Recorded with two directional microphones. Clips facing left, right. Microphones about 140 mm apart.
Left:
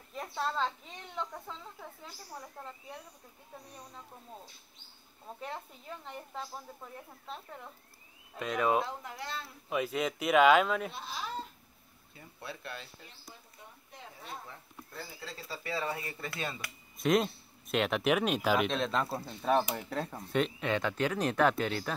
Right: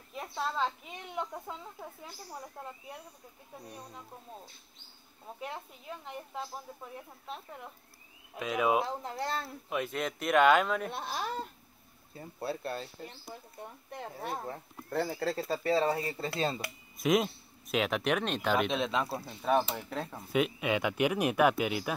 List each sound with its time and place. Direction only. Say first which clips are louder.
0.1 s speech: even; 5° right (ahead or behind)
5.4 s speech: right 1 dB; 5° right (ahead or behind)
9.0 s speech: right 6 dB; 40° right (ahead or behind)
9.7 s speech: left 2 dB; centre (ahead or behind)
10.9 s speech: right 5 dB; 55° right (ahead or behind)
12.1 s speech: right 9 dB; 35° right (ahead or behind)
13.6 s speech: right 11 dB; 55° right (ahead or behind)
15.0 s speech: right 14 dB; 65° right (ahead or behind); by 16.7 s 30° right (ahead or behind)
17.0 s speech: even; centre (ahead or behind)